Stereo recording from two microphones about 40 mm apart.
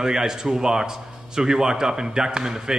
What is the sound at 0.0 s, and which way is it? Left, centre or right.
A man's voice, centre.